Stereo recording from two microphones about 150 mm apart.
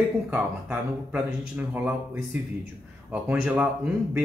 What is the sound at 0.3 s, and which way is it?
A man's voice, 10° right (ahead or behind).